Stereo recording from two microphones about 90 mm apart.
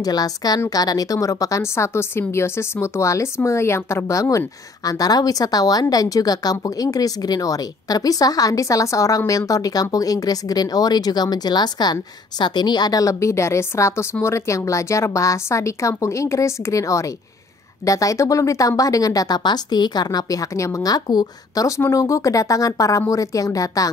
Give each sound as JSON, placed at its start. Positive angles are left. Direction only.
{"t": 0.0, "sound": "speech", "side_deg": 45}